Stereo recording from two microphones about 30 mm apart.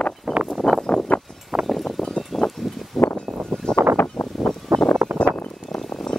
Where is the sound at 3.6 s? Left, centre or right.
Left.